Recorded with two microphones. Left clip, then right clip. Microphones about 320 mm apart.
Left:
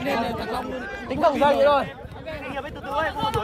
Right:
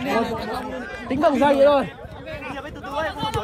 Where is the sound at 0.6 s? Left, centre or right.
Right.